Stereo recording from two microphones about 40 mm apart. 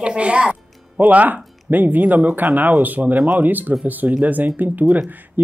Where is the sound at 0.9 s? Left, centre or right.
Right.